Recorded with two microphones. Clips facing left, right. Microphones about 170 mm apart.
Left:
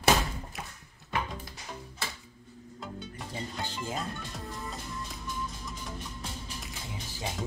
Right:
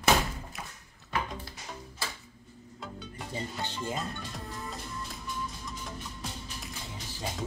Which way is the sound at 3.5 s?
Centre (ahead or behind).